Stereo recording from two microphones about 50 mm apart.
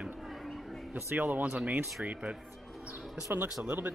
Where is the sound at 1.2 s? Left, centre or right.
Right.